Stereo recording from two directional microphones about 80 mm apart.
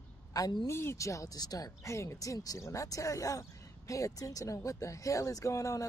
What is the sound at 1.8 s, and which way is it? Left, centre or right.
Speech, left.